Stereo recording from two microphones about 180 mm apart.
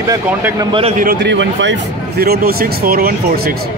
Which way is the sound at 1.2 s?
80° right.